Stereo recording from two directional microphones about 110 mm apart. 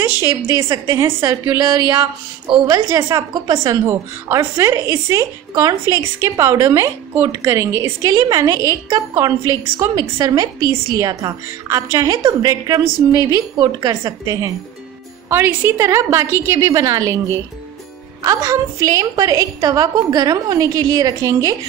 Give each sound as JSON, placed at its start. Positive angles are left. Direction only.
{"t": 0.2, "sound": "a woman's voice", "side_deg": -25}
{"t": 15.2, "sound": "a woman's voice", "side_deg": -20}